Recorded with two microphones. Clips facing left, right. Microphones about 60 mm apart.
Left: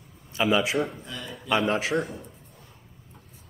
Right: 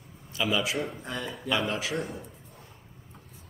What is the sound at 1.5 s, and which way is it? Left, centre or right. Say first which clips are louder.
Speech: left 5 dB; left.